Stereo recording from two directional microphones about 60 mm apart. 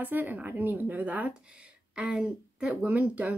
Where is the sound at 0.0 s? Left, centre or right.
Right.